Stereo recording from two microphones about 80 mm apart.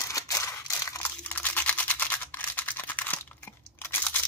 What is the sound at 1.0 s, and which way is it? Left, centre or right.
Camera, left.